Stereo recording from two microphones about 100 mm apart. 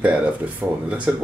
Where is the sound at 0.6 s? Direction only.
20° right (ahead or behind).